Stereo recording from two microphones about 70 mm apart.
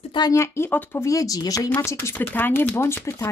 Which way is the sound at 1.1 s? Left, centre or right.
Left.